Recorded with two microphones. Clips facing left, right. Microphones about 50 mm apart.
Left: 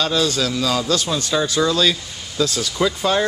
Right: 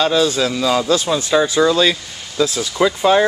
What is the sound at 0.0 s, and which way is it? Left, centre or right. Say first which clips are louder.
A man's voice: right 4 dB; right.